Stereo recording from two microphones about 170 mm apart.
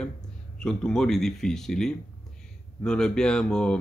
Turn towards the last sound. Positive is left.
turn(degrees=5)  # may be behind; listen again after turning